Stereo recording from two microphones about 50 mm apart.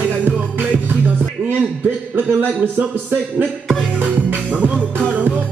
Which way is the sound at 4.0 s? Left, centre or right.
Right.